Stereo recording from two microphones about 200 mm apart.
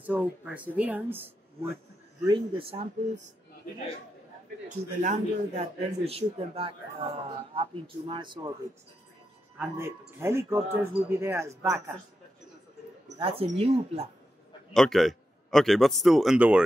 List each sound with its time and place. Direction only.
0.0 s a man's voice: 5° right (ahead or behind)
2.2 s a man's voice: 25° right (ahead or behind)
4.6 s a man's voice: 35° right (ahead or behind)
9.6 s a man's voice: 10° right (ahead or behind)
13.2 s a man's voice: 30° right (ahead or behind)
14.7 s a man's voice: centre (ahead or behind)